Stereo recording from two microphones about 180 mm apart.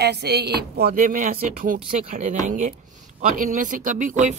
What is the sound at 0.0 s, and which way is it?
Speech, 65° right (ahead or behind).